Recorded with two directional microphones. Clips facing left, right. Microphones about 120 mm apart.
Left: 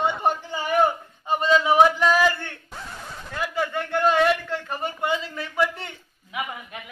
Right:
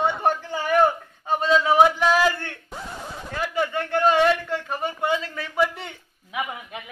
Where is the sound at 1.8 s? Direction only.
5° right (ahead or behind).